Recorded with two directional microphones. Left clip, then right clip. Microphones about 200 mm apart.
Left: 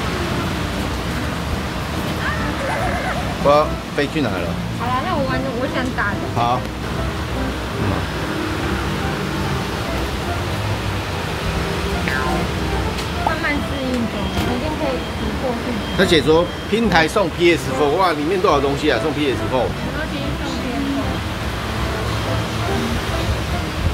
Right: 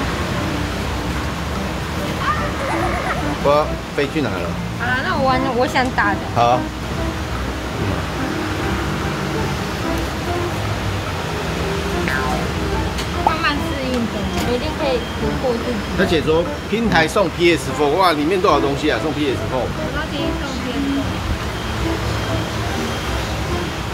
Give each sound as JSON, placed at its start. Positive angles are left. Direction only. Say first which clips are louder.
{"t": 3.4, "sound": "speech", "louder": "left 2 dB", "side_deg": 0}
{"t": 16.0, "sound": "speech", "louder": "left 3 dB", "side_deg": 25}
{"t": 16.9, "sound": "speech", "louder": "right 1 dB", "side_deg": 5}